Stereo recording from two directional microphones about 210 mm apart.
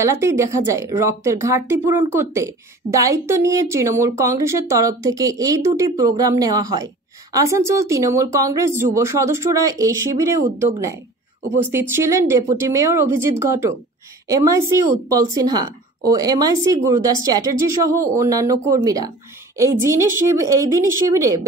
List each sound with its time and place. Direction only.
0.0 s speech: 15° right (ahead or behind)
11.6 s speech: 10° right (ahead or behind)